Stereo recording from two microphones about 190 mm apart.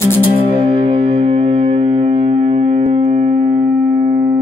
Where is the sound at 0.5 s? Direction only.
30° right (ahead or behind).